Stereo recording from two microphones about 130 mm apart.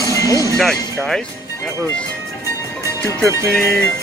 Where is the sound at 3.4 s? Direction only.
5° left (ahead or behind).